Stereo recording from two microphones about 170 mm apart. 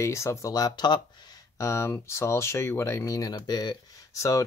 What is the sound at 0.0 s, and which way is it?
Speech, 15° left (ahead or behind).